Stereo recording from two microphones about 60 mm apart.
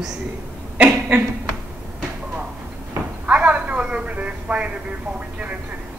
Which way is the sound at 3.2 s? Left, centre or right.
Right.